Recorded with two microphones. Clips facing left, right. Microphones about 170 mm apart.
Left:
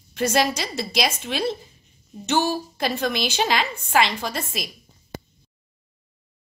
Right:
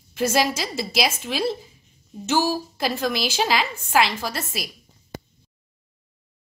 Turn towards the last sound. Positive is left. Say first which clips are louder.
# left 1 dB
turn(degrees=-5)  # may be behind; listen again after turning